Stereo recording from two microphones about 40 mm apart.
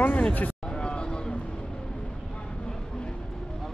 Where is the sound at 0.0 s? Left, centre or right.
Left.